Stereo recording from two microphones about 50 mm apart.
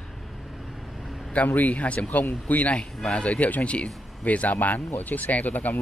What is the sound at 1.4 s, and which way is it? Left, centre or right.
Speech, left.